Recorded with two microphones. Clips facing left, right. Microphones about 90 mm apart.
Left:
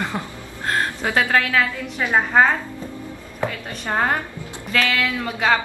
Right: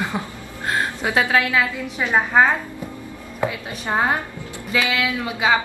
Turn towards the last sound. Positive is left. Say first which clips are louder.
# even
turn(degrees=-5)  # may be behind; listen again after turning